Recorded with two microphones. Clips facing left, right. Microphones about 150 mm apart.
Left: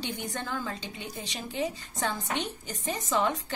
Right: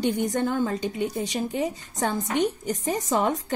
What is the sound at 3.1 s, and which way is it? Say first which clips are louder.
Speech: right 3 dB; 40° right (ahead or behind).